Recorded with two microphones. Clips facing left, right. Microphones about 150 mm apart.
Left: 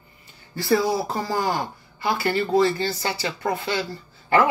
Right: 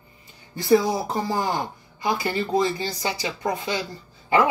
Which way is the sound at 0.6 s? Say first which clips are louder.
Right 2 dB; 20° right (ahead or behind).